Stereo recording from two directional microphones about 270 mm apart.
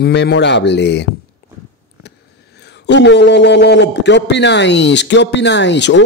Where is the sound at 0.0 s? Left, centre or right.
Left.